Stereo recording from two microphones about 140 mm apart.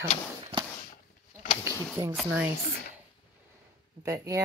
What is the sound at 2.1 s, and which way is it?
Speech, 5° right (ahead or behind).